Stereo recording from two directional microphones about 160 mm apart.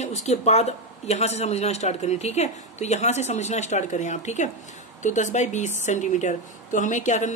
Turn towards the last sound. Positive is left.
turn(degrees=50)  # may be behind; listen again after turning